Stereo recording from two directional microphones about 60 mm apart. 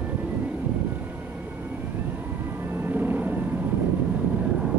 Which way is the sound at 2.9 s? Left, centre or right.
Right.